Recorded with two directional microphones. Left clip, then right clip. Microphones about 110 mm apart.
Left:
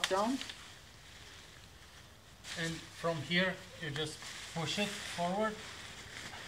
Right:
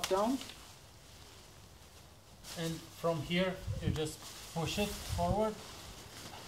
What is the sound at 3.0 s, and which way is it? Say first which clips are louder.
Sizzle: left 1 dB; 30° right (ahead or behind).